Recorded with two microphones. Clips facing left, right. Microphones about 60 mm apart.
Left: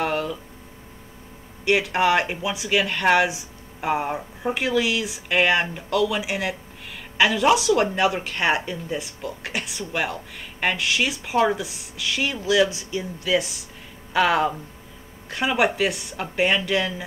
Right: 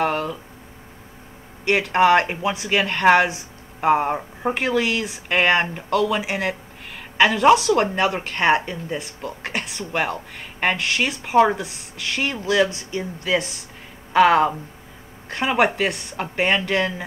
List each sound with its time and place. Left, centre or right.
0.0 s speech: right
1.6 s speech: right
3.8 s speech: right
15.2 s speech: right